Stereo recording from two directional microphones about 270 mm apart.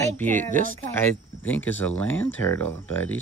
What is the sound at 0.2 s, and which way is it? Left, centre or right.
Speech, centre.